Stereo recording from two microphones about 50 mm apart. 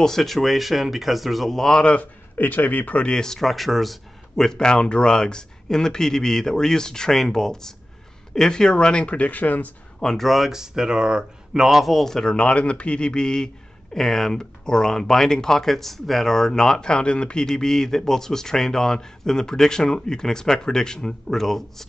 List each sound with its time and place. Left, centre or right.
0.0 s speech: centre
2.0 s a man's voice: left
3.1 s a man's voice: centre
4.5 s speech: centre; by 9.7 s left
9.9 s speech: centre